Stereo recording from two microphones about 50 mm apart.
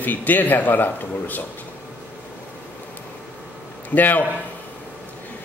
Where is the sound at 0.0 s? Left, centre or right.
Left.